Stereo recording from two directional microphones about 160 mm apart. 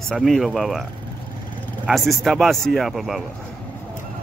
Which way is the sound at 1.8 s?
Centre (ahead or behind).